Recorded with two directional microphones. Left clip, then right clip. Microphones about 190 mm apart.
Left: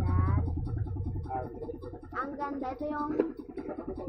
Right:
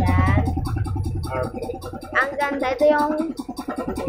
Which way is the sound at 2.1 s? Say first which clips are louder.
Right 14 dB; 20° right (ahead or behind).